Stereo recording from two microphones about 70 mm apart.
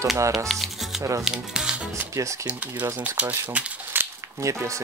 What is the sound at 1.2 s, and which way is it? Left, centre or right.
Speech, centre.